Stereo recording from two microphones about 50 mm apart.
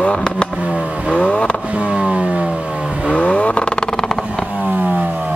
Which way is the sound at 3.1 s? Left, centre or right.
Left.